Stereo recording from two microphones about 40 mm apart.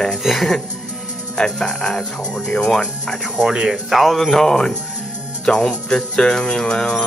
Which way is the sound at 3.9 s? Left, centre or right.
Centre.